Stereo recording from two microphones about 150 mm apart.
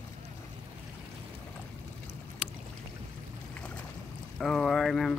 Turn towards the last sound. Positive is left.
turn(degrees=0)  # may be behind; listen again after turning